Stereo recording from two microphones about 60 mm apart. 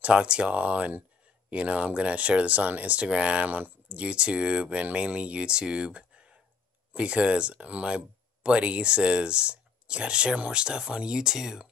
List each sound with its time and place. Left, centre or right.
0.0 s speech: centre